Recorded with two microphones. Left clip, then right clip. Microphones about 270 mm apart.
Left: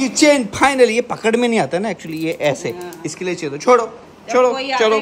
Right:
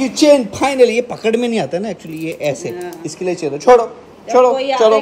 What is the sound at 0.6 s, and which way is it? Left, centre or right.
Speech, left.